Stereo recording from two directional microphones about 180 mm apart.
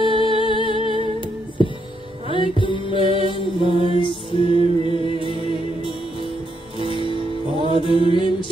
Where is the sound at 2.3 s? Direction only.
30° left (ahead or behind).